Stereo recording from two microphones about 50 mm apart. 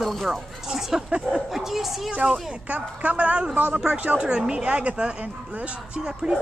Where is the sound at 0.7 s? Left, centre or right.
Centre.